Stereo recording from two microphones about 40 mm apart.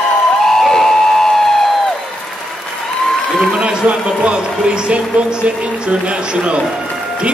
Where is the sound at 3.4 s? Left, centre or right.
Centre.